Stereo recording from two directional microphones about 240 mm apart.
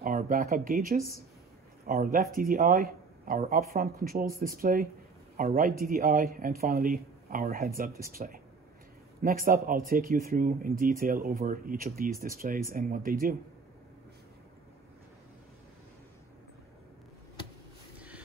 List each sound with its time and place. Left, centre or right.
0.0 s speech: right